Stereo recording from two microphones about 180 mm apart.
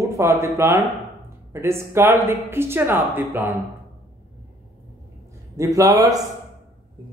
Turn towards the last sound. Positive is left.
turn(degrees=-20)  # may be behind; listen again after turning